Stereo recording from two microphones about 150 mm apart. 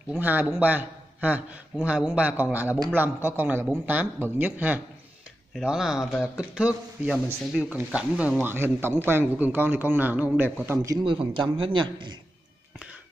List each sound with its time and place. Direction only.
0.2 s a man's voice: 10° right (ahead or behind)
11.1 s speech: 35° right (ahead or behind)